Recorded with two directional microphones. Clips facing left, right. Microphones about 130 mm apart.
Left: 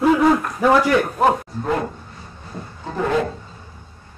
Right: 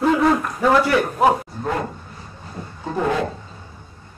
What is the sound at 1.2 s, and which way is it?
Speech, 5° right (ahead or behind).